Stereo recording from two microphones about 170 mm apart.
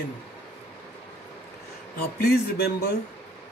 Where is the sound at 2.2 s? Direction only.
70° left (ahead or behind).